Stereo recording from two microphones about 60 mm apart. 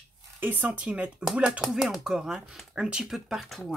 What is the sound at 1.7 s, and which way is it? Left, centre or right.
Speech, centre.